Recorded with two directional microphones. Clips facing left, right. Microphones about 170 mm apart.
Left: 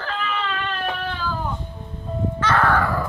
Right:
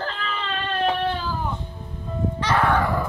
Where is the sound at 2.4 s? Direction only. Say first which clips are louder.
Left 1 dB; 15° right (ahead or behind).